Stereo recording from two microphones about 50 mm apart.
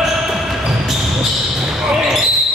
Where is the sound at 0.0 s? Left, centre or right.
Centre.